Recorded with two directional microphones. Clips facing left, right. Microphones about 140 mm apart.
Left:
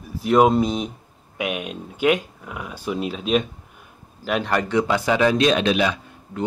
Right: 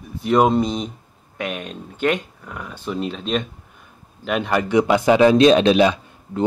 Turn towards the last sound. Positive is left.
turn(degrees=-30)  # may be behind; listen again after turning